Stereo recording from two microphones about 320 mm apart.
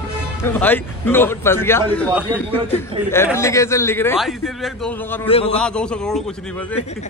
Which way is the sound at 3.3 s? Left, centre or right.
Centre.